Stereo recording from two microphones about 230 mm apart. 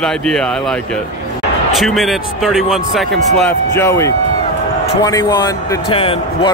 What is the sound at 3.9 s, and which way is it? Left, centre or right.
Speech, centre.